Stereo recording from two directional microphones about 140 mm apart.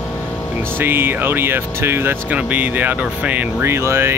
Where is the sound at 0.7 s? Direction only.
15° right (ahead or behind).